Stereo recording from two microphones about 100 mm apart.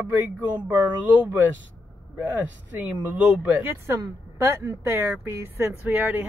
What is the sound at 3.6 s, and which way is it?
Speech, 25° right (ahead or behind).